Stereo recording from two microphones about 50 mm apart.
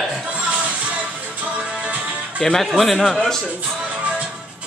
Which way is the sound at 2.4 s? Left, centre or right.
Centre.